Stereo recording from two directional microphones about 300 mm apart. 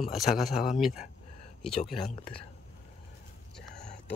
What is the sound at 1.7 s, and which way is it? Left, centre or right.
Speech, centre.